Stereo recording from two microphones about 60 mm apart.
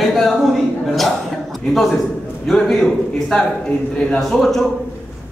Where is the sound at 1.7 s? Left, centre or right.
Centre.